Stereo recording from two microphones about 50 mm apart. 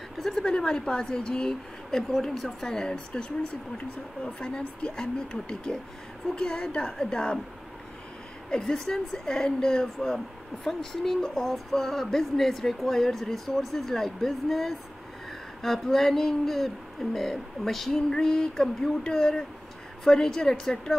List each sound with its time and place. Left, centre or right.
0.2 s a woman's voice: centre
8.5 s a woman's voice: centre
11.1 s a woman's voice: centre
11.4 s a woman's voice: centre